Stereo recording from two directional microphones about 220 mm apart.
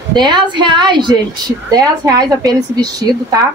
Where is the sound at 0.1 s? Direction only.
20° right (ahead or behind).